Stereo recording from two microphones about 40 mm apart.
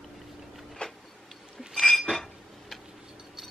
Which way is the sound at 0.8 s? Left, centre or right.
Left.